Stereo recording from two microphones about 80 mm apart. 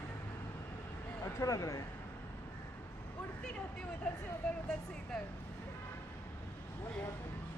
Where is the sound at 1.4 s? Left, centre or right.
Left.